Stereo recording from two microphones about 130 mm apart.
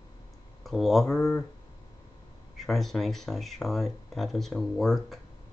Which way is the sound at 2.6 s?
Centre (ahead or behind).